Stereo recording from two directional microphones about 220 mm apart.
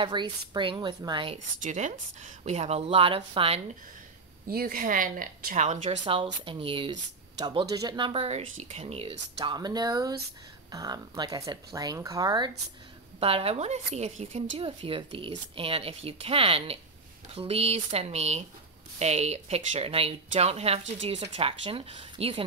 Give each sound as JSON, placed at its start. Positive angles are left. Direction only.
{"t": 0.0, "sound": "speech", "side_deg": -20}
{"t": 1.6, "sound": "speech", "side_deg": -35}
{"t": 4.5, "sound": "a woman's voice", "side_deg": -40}